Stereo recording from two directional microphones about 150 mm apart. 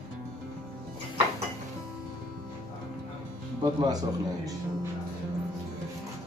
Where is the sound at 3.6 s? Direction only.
25° right (ahead or behind).